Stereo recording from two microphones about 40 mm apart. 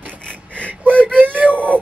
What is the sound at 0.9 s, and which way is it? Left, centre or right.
Whimper, left.